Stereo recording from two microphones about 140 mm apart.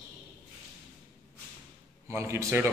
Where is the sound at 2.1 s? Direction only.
20° right (ahead or behind).